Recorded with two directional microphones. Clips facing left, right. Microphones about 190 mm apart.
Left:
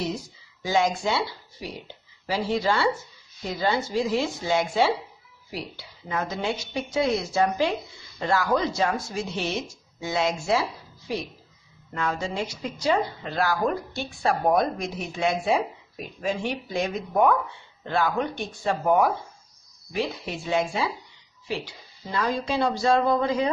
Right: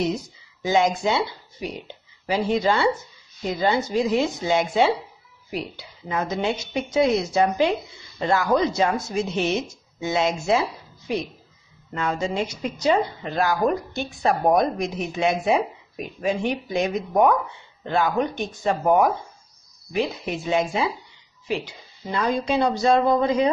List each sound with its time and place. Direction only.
0.0 s a woman's voice: 20° right (ahead or behind)
11.9 s a woman's voice: 20° right (ahead or behind)